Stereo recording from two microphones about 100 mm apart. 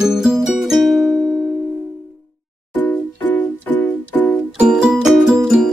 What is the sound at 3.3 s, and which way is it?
Keyboard, 20° left (ahead or behind).